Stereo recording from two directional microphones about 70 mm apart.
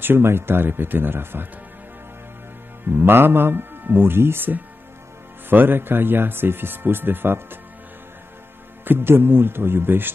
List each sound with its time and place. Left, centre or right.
0.0 s speech: right
2.9 s speech: right
8.8 s speech: right